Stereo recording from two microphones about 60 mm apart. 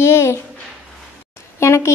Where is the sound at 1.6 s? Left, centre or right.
Left.